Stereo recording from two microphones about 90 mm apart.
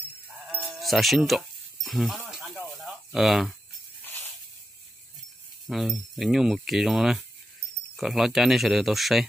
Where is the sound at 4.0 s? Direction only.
25° left (ahead or behind).